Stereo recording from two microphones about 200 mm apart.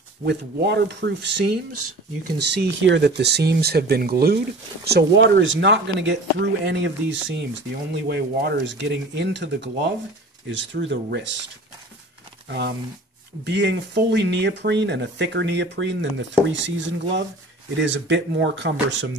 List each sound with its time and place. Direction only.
0.2 s speech: 55° right (ahead or behind)
12.4 s speech: 55° right (ahead or behind)